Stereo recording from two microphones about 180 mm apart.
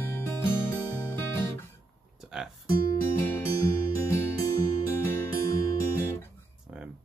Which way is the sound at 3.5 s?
15° left (ahead or behind).